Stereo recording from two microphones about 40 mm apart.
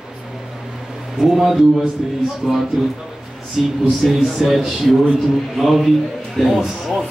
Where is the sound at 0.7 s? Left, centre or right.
Centre.